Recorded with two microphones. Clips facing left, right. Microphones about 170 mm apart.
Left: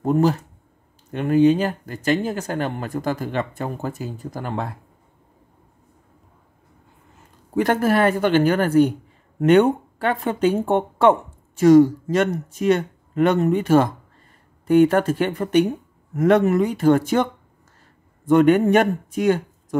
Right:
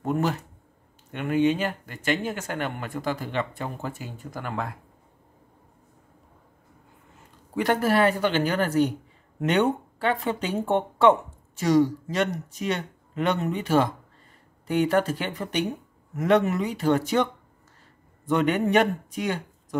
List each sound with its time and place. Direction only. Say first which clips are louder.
0.0 s speech: left 7 dB; 35° left (ahead or behind)
7.5 s speech: left 4 dB; 45° left (ahead or behind)